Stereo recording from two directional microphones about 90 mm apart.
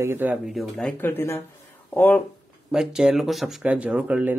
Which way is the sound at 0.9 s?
25° left (ahead or behind).